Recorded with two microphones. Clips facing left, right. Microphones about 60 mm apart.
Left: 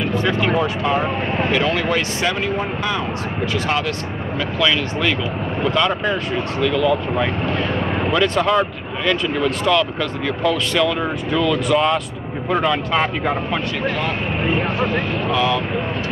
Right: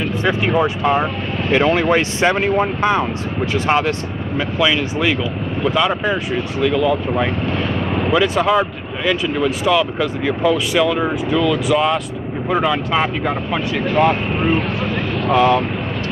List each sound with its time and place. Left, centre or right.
0.2 s speech: centre
4.6 s speech: centre
15.3 s speech: right